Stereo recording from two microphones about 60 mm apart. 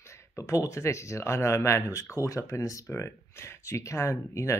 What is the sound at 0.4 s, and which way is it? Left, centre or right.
Speech, left.